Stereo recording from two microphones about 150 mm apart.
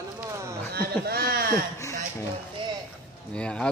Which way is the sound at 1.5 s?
20° left (ahead or behind).